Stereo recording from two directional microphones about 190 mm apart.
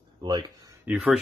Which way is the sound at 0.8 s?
5° right (ahead or behind).